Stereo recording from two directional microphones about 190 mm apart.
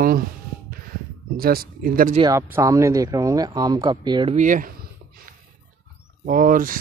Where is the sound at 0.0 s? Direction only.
50° right (ahead or behind).